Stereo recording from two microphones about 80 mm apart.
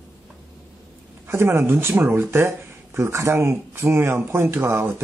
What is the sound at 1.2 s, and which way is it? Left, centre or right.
Speech, right.